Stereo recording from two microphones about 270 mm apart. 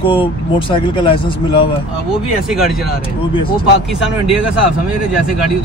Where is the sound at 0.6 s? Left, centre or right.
Centre.